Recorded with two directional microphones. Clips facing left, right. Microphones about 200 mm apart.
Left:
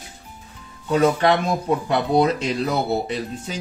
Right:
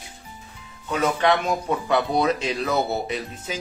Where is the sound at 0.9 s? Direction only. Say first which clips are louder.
Left 4 dB; 35° left (ahead or behind).